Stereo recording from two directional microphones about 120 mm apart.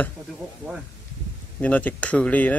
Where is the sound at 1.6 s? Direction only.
15° left (ahead or behind).